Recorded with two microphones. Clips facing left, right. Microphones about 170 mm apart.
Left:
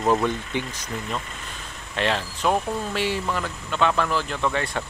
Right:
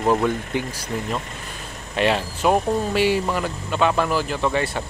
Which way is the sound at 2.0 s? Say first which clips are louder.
Right 4 dB; 10° right (ahead or behind).